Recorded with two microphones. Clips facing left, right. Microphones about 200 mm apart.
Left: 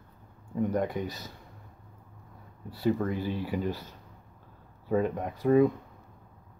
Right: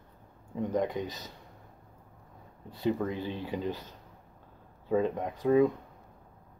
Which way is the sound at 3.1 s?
20° right (ahead or behind).